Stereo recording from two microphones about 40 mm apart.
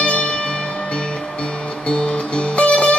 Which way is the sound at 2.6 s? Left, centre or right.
Left.